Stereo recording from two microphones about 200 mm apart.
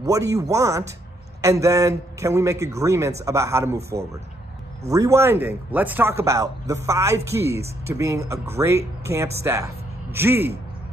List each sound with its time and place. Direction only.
0.0 s speech: 15° right (ahead or behind)
4.8 s speech: 15° right (ahead or behind)